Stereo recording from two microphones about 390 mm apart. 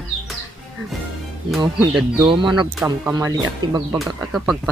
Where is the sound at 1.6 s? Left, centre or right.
Centre.